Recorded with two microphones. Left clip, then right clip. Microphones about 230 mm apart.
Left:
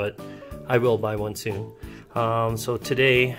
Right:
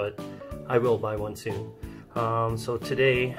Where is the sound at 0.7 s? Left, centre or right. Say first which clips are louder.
Left 3 dB; left.